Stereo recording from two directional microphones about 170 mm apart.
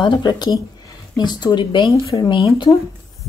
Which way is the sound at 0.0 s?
25° left (ahead or behind).